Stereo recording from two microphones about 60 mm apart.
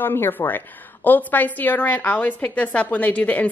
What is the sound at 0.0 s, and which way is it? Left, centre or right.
A woman's voice, left.